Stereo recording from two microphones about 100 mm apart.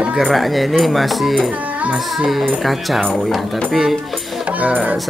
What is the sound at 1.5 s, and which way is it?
Music, 15° right (ahead or behind).